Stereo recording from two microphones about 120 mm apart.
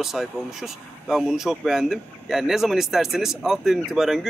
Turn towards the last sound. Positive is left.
turn(degrees=0)  # may be behind; listen again after turning